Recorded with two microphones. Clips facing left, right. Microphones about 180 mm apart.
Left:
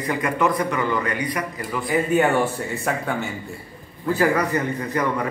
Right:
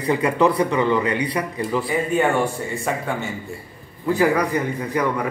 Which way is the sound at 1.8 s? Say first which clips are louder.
Left 3 dB; 5° left (ahead or behind).